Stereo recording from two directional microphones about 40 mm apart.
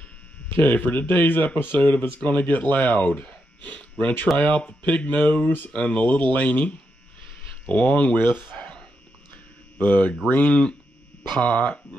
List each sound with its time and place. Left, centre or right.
0.5 s speech: left
1.8 s speech: left
3.1 s a sound: left
4.4 s speech: left
8.2 s speech: left
9.8 s speech: left